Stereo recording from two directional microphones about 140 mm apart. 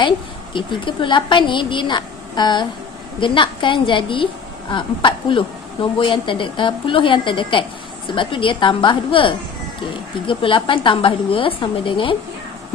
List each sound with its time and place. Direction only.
0.0 s a woman's voice: 35° left (ahead or behind)